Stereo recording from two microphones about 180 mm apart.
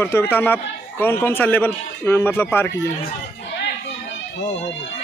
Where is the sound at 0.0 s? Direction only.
15° left (ahead or behind).